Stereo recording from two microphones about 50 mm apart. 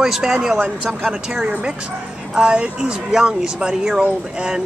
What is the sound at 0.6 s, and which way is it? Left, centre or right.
Speech, centre.